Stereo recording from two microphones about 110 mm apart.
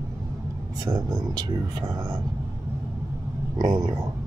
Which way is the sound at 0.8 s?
35° right (ahead or behind).